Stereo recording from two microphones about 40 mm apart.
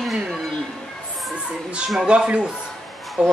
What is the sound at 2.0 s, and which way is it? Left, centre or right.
Speech, right.